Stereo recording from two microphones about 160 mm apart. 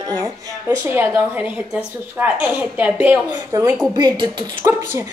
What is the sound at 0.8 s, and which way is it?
A woman's voice, 10° right (ahead or behind).